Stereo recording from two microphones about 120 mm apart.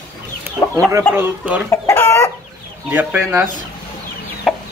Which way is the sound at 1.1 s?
15° right (ahead or behind).